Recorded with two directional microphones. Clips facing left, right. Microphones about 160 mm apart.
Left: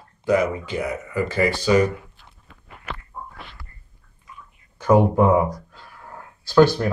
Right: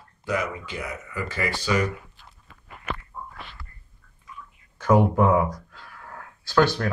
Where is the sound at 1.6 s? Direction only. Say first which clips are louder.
Left 6 dB; 30° left (ahead or behind).